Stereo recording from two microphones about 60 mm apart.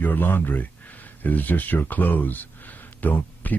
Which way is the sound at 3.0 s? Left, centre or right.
Left.